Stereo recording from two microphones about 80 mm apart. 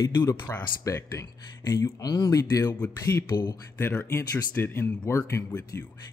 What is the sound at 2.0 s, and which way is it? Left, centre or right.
Speech, left.